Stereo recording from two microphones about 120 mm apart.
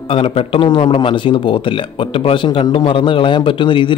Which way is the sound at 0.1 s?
55° left (ahead or behind).